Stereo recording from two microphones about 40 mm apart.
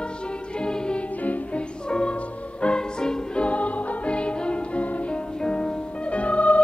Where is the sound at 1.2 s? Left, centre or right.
Left.